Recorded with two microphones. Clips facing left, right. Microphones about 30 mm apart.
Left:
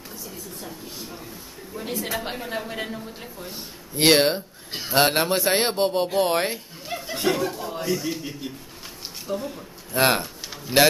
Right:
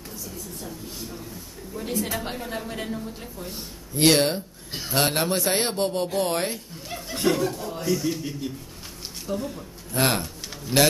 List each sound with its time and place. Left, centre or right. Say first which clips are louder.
0.2 s a woman's voice: even; centre
3.9 s a man's voice: left 2 dB; left
7.0 s chuckle: right 1 dB; centre
9.2 s speech: even; centre